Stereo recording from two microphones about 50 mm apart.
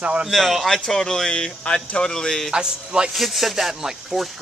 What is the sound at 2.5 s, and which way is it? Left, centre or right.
Speech, centre.